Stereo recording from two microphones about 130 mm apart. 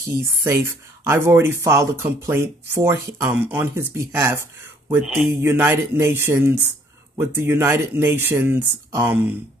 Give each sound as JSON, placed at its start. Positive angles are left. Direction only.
{"t": 0.1, "sound": "speech", "side_deg": -20}
{"t": 5.0, "sound": "speech", "side_deg": -5}
{"t": 5.3, "sound": "speech", "side_deg": -20}